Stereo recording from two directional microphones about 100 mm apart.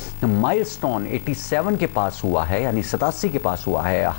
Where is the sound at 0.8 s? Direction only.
5° left (ahead or behind).